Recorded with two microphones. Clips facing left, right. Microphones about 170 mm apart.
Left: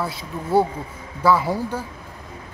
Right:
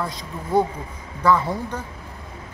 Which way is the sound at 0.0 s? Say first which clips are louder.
Left 2 dB; 5° left (ahead or behind).